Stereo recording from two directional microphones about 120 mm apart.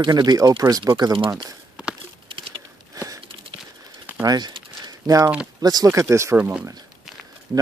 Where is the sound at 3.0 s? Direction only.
30° right (ahead or behind).